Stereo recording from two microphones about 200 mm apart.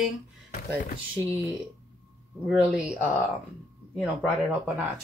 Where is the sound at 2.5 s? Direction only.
5° right (ahead or behind).